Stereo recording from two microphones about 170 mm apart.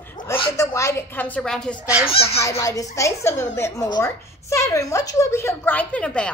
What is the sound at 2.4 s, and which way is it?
A woman's voice, 20° left (ahead or behind).